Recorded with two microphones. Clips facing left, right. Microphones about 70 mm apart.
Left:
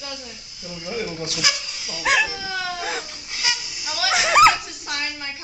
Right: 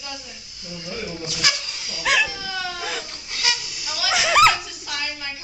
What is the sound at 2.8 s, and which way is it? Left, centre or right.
Baby cry, centre.